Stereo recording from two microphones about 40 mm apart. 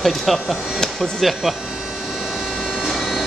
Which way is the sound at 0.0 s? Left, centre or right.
Centre.